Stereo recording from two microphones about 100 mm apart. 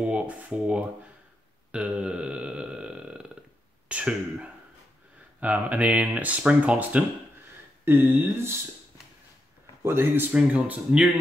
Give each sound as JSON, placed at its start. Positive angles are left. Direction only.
{"t": 0.0, "sound": "speech", "side_deg": -15}
{"t": 1.7, "sound": "burping", "side_deg": -10}
{"t": 3.9, "sound": "speech", "side_deg": -10}
{"t": 9.8, "sound": "speech", "side_deg": -25}